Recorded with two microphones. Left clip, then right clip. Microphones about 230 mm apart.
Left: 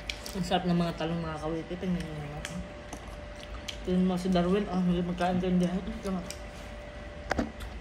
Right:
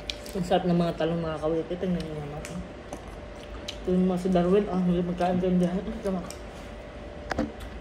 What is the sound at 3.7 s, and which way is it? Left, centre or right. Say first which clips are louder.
A man's voice: right 4 dB; centre.